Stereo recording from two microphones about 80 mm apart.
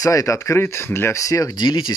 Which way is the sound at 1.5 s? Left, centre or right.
Left.